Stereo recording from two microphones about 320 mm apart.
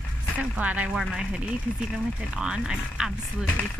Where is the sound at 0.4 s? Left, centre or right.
Centre.